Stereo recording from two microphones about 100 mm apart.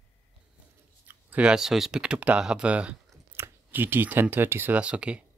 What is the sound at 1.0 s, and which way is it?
Speech, 10° right (ahead or behind).